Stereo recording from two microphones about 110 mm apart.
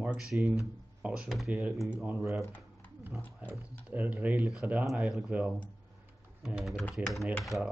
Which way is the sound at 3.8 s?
10° right (ahead or behind).